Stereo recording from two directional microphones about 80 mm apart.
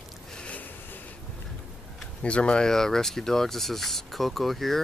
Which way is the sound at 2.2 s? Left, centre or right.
Centre.